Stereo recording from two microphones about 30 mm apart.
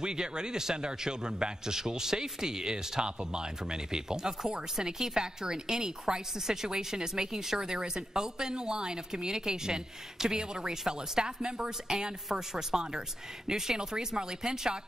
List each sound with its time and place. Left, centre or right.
0.0 s a woman's voice: right